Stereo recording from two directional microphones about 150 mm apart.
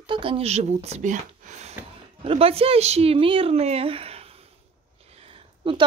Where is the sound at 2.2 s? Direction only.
40° right (ahead or behind).